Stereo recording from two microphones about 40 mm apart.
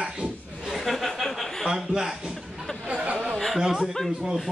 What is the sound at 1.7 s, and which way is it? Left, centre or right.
Speech, centre.